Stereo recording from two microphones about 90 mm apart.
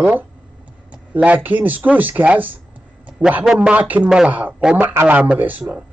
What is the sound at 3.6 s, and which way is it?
A man's voice, 15° right (ahead or behind).